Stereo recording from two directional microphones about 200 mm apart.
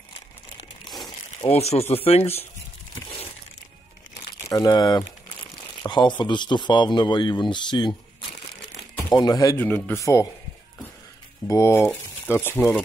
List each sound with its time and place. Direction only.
1.6 s speech: 30° left (ahead or behind)
4.5 s speech: 20° left (ahead or behind)
11.4 s speech: 15° left (ahead or behind)